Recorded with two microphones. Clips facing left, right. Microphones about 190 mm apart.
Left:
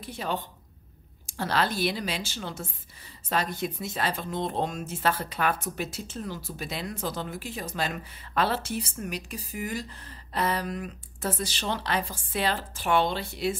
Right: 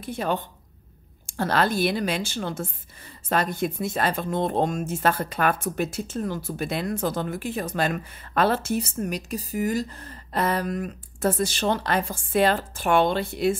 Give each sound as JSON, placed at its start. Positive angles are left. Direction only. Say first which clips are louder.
{"t": 0.0, "sound": "a woman's voice", "louder": "right 5 dB", "side_deg": -50}